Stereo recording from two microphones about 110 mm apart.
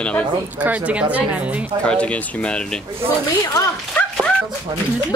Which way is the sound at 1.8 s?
10° left (ahead or behind).